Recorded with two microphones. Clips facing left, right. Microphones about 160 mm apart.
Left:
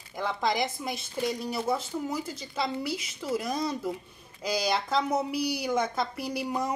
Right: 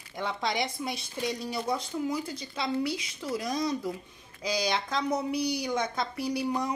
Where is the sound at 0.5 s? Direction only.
Centre (ahead or behind).